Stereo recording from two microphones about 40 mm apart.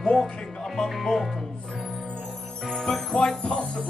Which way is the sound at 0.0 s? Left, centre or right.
Centre.